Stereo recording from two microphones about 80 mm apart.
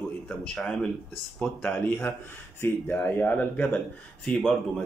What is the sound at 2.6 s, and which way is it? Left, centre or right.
Speech, left.